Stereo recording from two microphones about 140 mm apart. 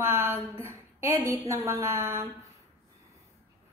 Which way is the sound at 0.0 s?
15° right (ahead or behind).